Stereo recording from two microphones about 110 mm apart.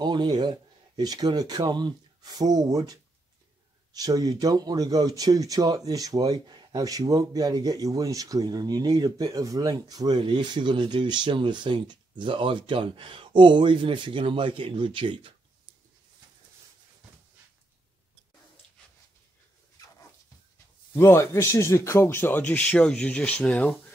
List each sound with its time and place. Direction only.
0.0 s speech: 40° right (ahead or behind)
20.9 s speech: 25° left (ahead or behind)